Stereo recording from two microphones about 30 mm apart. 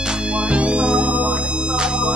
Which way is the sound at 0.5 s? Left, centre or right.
Right.